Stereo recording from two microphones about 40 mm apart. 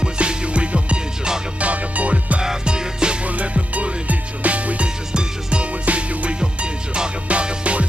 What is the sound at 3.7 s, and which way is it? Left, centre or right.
Music, right.